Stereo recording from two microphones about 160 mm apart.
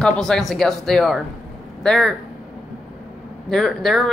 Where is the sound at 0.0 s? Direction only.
5° left (ahead or behind).